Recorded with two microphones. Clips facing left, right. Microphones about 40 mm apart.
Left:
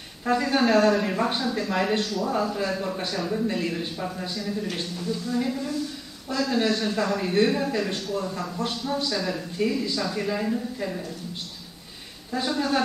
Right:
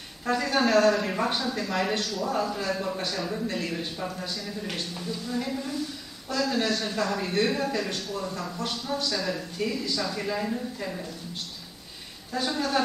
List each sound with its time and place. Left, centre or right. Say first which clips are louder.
0.2 s a man's voice: left 2 dB; centre
12.4 s a man's voice: left 2 dB; centre